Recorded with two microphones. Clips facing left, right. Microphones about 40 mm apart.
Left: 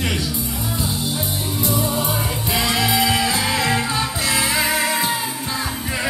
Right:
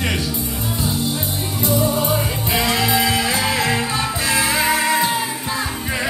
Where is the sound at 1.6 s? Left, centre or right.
Centre.